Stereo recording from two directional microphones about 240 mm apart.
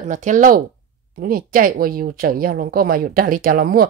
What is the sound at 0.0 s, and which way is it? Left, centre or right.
Speech, right.